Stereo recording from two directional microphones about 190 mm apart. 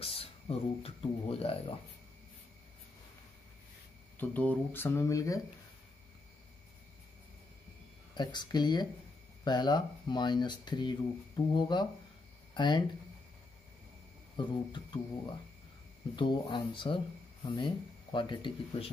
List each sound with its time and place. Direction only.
0.0 s speech: 30° left (ahead or behind)
4.2 s speech: 10° left (ahead or behind)
8.1 s speech: 25° left (ahead or behind)
14.3 s speech: 25° left (ahead or behind)
16.2 s speech: 20° left (ahead or behind)